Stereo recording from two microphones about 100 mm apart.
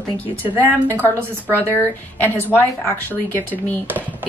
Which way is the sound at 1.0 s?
20° left (ahead or behind).